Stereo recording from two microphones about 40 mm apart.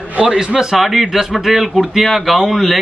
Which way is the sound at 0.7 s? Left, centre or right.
Centre.